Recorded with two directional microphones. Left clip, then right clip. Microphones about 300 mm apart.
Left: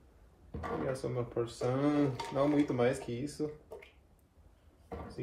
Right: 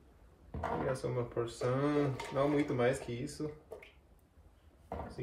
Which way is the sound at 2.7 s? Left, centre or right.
Centre.